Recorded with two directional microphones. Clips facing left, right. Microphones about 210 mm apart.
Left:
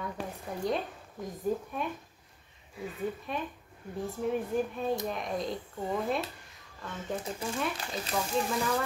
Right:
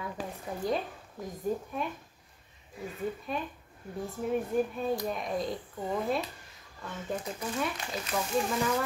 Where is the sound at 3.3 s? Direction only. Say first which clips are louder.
Right 1 dB; centre (ahead or behind).